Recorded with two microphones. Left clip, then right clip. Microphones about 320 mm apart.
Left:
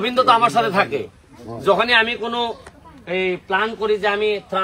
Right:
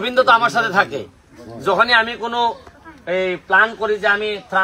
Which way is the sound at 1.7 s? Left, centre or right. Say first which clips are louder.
Right 1 dB; centre.